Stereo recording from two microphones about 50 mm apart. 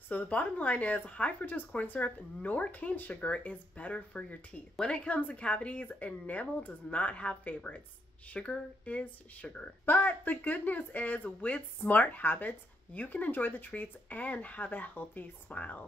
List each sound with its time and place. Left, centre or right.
0.1 s speech: left
1.4 s a woman's voice: left
9.8 s speech: left